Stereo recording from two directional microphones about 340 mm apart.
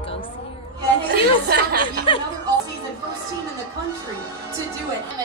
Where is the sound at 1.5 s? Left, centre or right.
Right.